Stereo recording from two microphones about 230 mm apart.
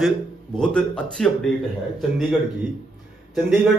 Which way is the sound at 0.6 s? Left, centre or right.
Centre.